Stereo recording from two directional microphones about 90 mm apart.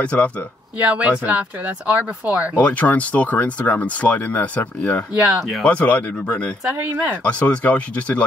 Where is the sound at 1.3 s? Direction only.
15° right (ahead or behind).